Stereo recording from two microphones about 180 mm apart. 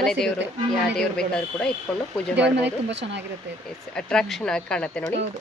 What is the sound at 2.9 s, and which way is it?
Speech, 75° right (ahead or behind).